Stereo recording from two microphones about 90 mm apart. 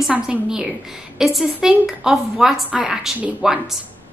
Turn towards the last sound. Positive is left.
turn(degrees=-10)  # may be behind; listen again after turning